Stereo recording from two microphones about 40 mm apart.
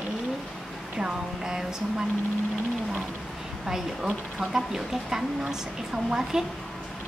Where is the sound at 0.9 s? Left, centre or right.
Centre.